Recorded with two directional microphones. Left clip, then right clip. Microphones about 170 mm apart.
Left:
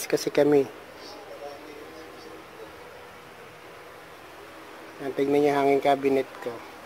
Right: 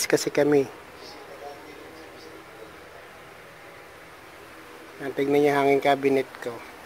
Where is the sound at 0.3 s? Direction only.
5° right (ahead or behind).